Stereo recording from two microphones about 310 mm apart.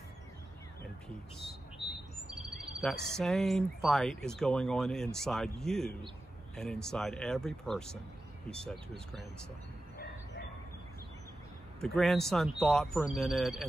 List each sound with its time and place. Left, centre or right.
1.8 s chirp: centre
2.2 s speech: centre
9.9 s bow-wow: left
11.8 s speech: centre